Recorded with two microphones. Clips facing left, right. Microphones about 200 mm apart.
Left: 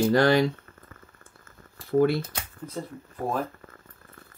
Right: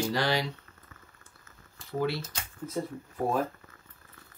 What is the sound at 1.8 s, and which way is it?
Speech, 50° left (ahead or behind).